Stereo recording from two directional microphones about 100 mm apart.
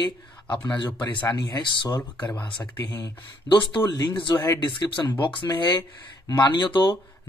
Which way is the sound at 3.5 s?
50° left (ahead or behind).